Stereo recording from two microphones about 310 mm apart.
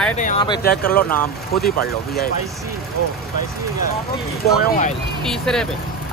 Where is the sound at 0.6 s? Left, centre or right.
Left.